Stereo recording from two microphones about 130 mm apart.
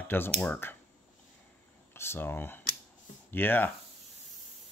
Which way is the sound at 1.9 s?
20° left (ahead or behind).